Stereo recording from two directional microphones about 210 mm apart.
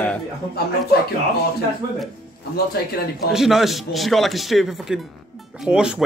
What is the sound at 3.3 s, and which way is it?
Speech, centre (ahead or behind).